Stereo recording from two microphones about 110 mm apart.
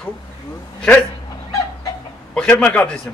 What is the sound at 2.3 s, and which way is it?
Speech, 5° left (ahead or behind).